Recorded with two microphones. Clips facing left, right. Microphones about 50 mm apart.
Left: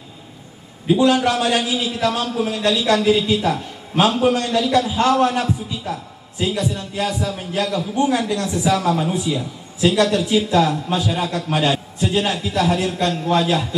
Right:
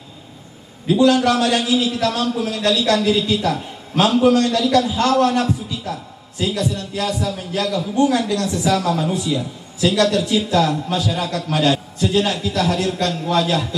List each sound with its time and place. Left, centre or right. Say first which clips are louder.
0.8 s a man's voice: right 1 dB; centre